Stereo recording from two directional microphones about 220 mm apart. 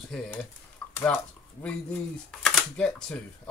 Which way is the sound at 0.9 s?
10° left (ahead or behind).